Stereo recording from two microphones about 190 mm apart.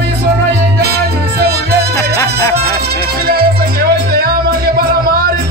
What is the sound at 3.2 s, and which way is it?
Music, 50° right (ahead or behind).